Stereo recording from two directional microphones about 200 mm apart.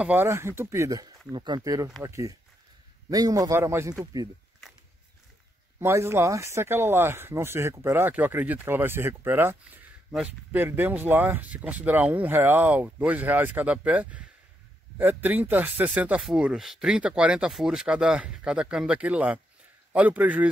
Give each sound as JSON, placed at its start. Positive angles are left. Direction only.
{"t": 0.0, "sound": "speech", "side_deg": -10}
{"t": 5.8, "sound": "speech", "side_deg": -15}